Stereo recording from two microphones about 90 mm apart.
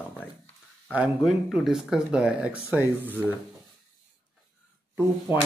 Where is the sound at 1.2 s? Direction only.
5° right (ahead or behind); by 3.3 s 20° right (ahead or behind).